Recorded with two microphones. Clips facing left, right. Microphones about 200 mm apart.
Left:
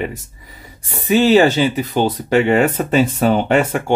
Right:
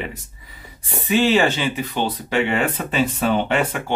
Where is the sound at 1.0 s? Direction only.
40° left (ahead or behind).